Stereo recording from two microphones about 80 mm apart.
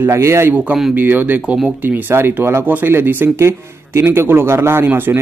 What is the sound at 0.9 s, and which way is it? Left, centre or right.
Speech, right.